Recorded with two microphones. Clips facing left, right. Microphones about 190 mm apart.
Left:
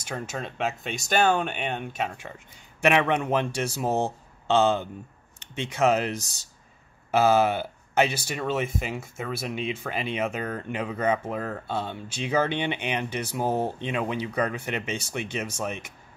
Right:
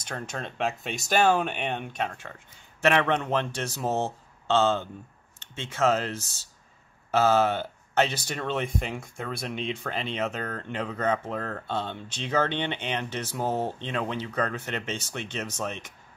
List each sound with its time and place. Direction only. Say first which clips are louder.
0.0 s speech: left 2 dB; 5° left (ahead or behind)